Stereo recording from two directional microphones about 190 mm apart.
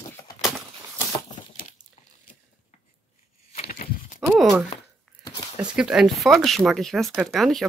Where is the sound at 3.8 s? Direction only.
50° left (ahead or behind).